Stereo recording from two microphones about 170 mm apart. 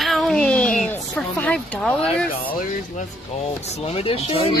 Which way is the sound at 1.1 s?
10° left (ahead or behind).